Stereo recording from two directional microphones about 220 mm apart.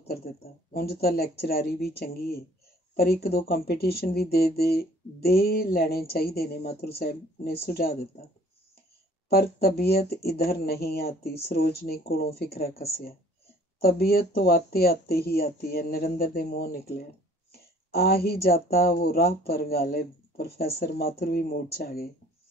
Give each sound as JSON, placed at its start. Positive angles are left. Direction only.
{"t": 0.7, "sound": "speech", "side_deg": 45}
{"t": 9.3, "sound": "speech", "side_deg": 45}